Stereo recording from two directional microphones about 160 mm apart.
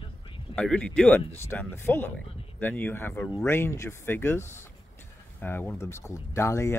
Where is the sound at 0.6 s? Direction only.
5° left (ahead or behind).